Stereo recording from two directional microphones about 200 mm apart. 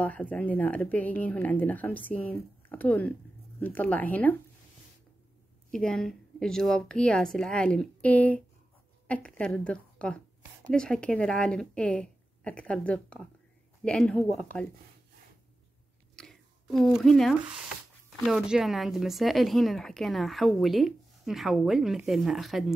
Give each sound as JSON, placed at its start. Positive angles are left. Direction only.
{"t": 0.0, "sound": "speech", "side_deg": 5}
{"t": 5.7, "sound": "a woman's voice", "side_deg": 5}
{"t": 16.2, "sound": "a sound", "side_deg": 0}
{"t": 18.2, "sound": "speech", "side_deg": 0}